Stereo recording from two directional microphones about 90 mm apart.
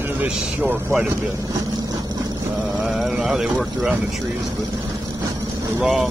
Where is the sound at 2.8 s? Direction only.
5° right (ahead or behind).